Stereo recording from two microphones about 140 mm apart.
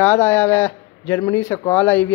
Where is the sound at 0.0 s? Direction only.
15° left (ahead or behind).